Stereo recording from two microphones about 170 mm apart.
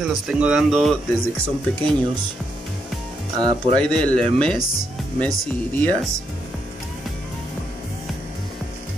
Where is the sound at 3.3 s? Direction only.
25° right (ahead or behind).